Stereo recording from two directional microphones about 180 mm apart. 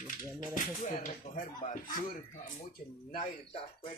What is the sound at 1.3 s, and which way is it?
Speech, 45° left (ahead or behind).